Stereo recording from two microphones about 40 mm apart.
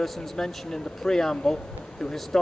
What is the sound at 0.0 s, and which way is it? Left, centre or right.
Speech, centre.